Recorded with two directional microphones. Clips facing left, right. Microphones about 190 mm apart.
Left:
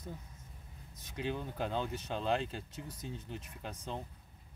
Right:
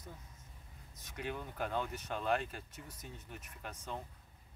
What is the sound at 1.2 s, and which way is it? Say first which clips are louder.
Speech: left 3 dB; 25° left (ahead or behind).